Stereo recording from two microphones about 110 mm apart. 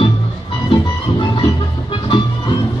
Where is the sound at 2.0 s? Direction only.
45° left (ahead or behind).